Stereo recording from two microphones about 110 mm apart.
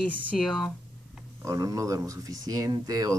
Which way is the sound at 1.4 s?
30° right (ahead or behind).